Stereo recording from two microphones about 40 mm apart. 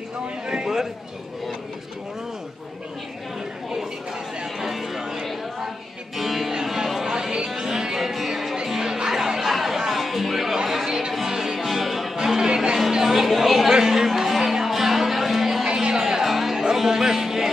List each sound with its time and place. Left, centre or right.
0.5 s a sound: centre
4.6 s a sound: centre
6.1 s music: centre
10.7 s chatter: centre
11.1 s music: centre
12.2 s music: centre
12.9 s speech: centre
13.7 s music: centre